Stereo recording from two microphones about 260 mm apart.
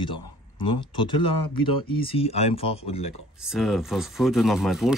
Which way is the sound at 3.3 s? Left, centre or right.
Centre.